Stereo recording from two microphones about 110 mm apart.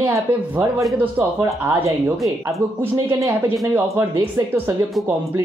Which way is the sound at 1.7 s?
20° right (ahead or behind).